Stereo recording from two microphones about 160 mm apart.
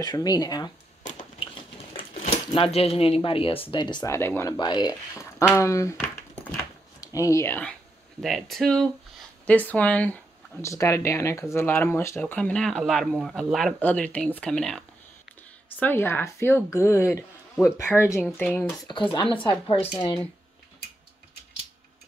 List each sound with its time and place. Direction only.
0.0 s speech: 25° left (ahead or behind)
2.5 s speech: 35° left (ahead or behind); by 4.6 s 15° left (ahead or behind)
4.6 s speech: 25° left (ahead or behind)
7.0 s speech: 20° left (ahead or behind)
8.2 s speech: centre (ahead or behind)
18.9 s speech: 25° left (ahead or behind)